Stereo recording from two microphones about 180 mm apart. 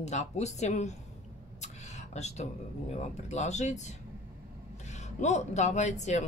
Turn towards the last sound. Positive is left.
turn(degrees=40)  # may be behind; listen again after turning